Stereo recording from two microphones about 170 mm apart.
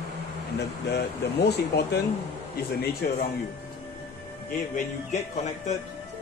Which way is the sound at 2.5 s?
70° left (ahead or behind).